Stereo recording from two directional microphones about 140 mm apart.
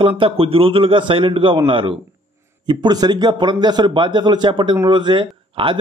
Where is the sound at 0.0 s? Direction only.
40° right (ahead or behind).